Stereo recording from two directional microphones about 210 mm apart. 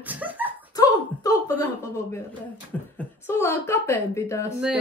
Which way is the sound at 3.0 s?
10° left (ahead or behind).